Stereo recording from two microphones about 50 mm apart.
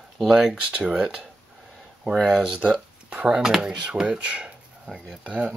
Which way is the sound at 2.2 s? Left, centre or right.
Centre.